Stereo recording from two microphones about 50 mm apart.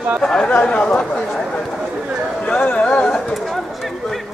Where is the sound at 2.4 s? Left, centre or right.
Left.